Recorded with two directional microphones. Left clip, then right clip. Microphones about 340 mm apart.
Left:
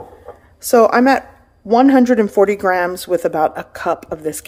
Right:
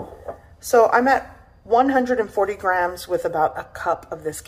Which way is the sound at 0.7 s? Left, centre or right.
Left.